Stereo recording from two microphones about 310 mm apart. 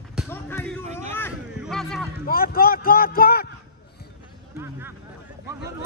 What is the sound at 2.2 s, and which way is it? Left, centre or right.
A man's voice, left.